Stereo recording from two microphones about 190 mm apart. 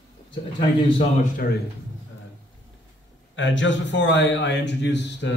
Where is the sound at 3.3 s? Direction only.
75° left (ahead or behind).